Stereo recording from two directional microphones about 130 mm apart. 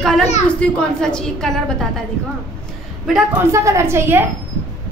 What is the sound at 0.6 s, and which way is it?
A woman's voice, 5° left (ahead or behind).